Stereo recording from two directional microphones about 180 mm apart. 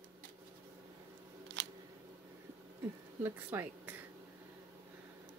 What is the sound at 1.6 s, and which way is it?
Camera, 75° right (ahead or behind).